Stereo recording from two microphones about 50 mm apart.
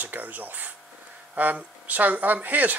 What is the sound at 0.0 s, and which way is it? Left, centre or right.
Speech, right.